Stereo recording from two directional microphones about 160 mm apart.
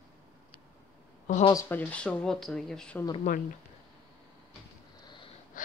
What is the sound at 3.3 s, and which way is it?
Speech, 55° left (ahead or behind).